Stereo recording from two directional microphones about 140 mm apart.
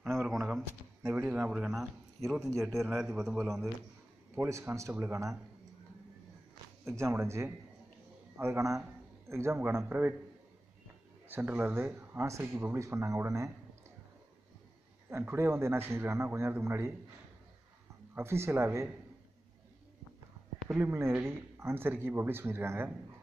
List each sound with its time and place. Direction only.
0.1 s a sound: centre (ahead or behind)
0.6 s a man's voice: 15° right (ahead or behind)
4.4 s speech: 20° right (ahead or behind)
7.0 s speech: 20° right (ahead or behind)
11.2 s speech: 15° right (ahead or behind)
15.0 s speech: 20° right (ahead or behind)
18.1 s speech: 20° right (ahead or behind)
20.6 s speech: 15° right (ahead or behind)